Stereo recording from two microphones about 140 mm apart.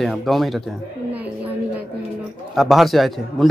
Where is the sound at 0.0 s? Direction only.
Centre (ahead or behind).